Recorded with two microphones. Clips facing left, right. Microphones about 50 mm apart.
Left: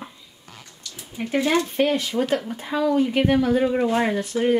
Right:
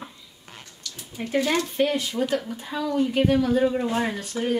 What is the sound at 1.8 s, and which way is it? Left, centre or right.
Speech, left.